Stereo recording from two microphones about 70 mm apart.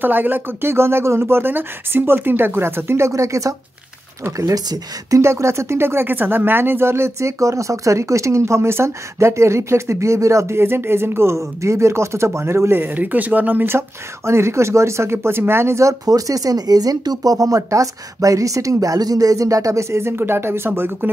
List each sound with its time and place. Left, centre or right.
0.0 s speech: right
3.1 s speech: right
12.8 s speech: right